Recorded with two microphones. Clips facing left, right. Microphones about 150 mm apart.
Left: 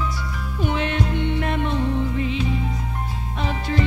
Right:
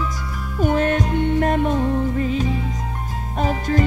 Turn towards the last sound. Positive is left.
turn(degrees=-45)  # may be behind; listen again after turning